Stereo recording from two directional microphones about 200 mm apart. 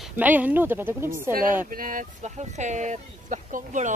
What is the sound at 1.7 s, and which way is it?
Speech, 45° right (ahead or behind).